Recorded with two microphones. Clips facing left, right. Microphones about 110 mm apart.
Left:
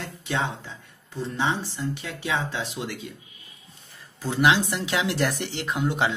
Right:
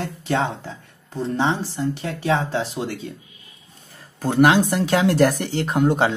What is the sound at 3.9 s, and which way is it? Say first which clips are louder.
Speech: right 6 dB; 50° right (ahead or behind).